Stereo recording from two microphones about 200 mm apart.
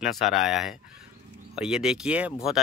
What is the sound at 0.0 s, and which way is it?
Speech, centre (ahead or behind).